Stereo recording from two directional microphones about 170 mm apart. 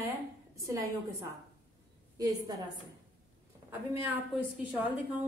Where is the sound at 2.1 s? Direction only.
20° right (ahead or behind).